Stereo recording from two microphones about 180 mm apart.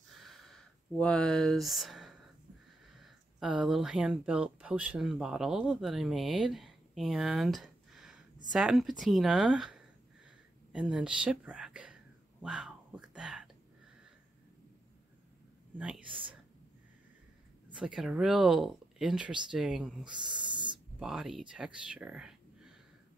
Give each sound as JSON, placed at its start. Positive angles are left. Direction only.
{"t": 0.1, "sound": "a sound", "side_deg": 0}
{"t": 3.0, "sound": "speech", "side_deg": -5}
{"t": 10.7, "sound": "a sound", "side_deg": -5}
{"t": 17.7, "sound": "speech", "side_deg": -5}
{"t": 20.1, "sound": "speech", "side_deg": -25}
{"t": 21.0, "sound": "speech", "side_deg": 0}